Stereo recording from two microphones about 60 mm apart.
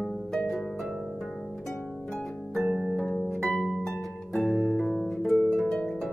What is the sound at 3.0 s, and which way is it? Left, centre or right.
Harp, centre.